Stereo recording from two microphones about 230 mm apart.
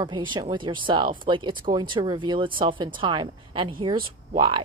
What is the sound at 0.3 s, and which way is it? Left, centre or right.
Speech, centre.